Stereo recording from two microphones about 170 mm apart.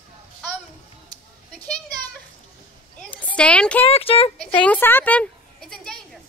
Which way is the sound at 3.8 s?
35° left (ahead or behind).